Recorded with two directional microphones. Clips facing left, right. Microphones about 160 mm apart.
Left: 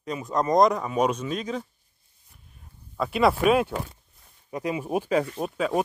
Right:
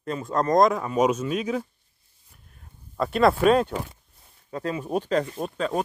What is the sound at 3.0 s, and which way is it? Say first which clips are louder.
Speech: right 2 dB; centre (ahead or behind).